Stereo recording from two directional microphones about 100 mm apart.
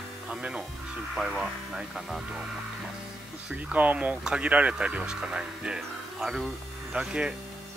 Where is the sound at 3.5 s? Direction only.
15° right (ahead or behind).